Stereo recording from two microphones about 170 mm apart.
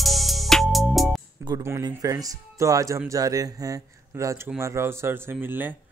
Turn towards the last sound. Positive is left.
turn(degrees=-10)  # may be behind; listen again after turning